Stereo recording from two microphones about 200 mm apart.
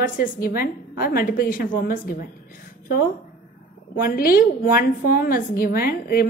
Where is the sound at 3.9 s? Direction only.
45° left (ahead or behind).